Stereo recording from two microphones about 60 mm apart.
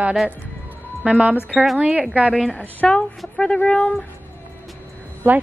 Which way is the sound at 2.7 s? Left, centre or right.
Left.